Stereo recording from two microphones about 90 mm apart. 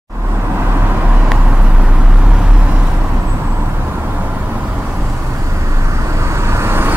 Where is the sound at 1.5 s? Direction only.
10° right (ahead or behind).